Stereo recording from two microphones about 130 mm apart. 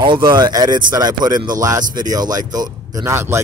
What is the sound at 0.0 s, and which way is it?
Speech, 35° right (ahead or behind).